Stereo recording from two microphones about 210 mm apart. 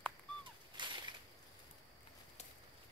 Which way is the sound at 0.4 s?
20° right (ahead or behind).